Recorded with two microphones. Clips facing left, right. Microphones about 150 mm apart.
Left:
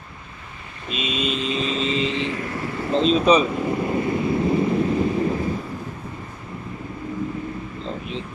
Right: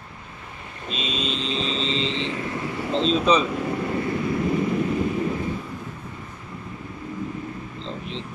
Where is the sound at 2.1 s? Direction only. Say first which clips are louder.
Left 3 dB; 25° right (ahead or behind).